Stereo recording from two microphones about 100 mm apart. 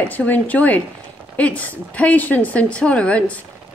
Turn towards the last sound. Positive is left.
turn(degrees=15)  # may be behind; listen again after turning